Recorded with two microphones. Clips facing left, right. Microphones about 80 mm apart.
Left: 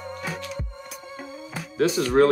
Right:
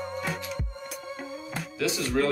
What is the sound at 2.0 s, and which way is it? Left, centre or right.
Speech, left.